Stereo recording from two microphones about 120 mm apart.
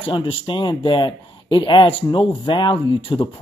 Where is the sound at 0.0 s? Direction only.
45° left (ahead or behind).